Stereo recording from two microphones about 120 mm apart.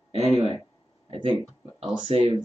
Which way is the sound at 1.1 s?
50° right (ahead or behind).